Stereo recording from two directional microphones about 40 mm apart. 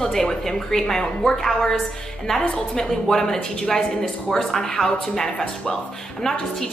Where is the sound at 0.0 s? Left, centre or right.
Centre.